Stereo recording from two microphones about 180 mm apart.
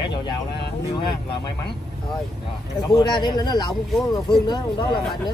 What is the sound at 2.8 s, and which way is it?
A man's voice, 20° left (ahead or behind).